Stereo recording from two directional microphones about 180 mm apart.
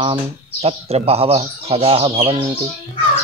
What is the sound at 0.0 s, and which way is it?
Speech, 30° right (ahead or behind).